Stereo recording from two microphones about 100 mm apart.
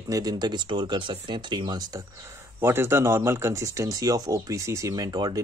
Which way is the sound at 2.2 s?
25° right (ahead or behind).